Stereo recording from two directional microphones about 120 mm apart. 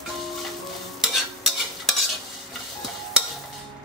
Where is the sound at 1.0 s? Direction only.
Centre (ahead or behind).